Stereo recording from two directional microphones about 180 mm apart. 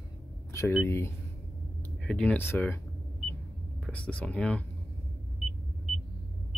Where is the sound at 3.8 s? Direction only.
5° left (ahead or behind).